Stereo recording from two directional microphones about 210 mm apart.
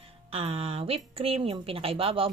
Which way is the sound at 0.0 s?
30° right (ahead or behind).